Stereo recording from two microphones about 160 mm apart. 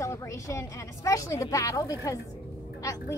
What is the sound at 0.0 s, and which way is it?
A woman's voice, 20° left (ahead or behind).